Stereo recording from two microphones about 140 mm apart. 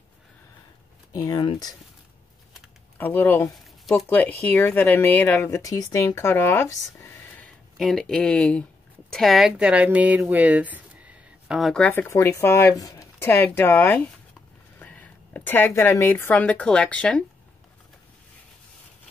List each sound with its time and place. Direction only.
1.1 s speech: 25° left (ahead or behind)
3.0 s speech: 15° left (ahead or behind)
7.7 s speech: centre (ahead or behind)
11.9 s a woman's voice: 20° left (ahead or behind)